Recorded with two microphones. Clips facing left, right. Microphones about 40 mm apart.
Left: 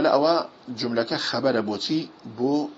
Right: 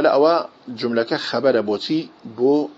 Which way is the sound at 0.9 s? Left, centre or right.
Centre.